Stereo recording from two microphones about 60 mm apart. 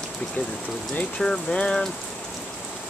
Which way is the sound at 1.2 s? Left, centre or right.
Centre.